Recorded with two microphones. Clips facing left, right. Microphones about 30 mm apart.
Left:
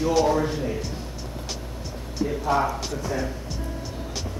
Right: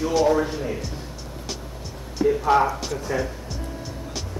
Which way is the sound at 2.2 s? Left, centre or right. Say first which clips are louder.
Right 6 dB; right.